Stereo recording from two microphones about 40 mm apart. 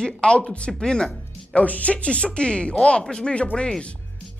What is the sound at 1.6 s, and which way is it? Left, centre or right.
Speech, left.